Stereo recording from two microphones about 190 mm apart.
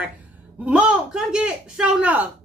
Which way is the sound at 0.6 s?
5° right (ahead or behind).